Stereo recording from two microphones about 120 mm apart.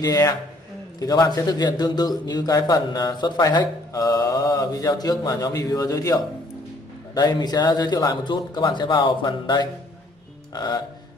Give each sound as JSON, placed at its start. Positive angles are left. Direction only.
{"t": 0.0, "sound": "a man's voice", "side_deg": 30}
{"t": 10.5, "sound": "music", "side_deg": 35}